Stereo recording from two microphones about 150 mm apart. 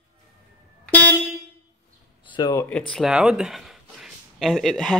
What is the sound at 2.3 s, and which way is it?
Speech, 25° left (ahead or behind).